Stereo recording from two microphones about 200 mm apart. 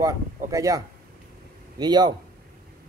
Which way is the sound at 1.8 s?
20° right (ahead or behind).